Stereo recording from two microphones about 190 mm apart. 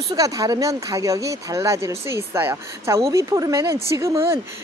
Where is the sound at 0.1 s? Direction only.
20° right (ahead or behind).